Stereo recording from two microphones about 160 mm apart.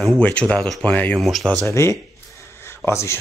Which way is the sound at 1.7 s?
20° left (ahead or behind).